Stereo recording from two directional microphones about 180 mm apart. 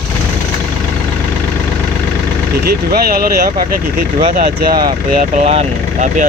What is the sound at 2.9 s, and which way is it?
Speech, 55° right (ahead or behind).